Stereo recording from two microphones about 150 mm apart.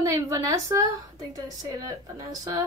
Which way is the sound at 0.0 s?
20° right (ahead or behind).